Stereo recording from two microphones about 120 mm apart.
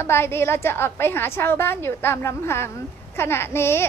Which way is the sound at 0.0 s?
20° left (ahead or behind).